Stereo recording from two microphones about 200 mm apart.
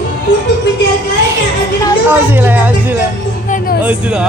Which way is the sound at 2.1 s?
10° right (ahead or behind).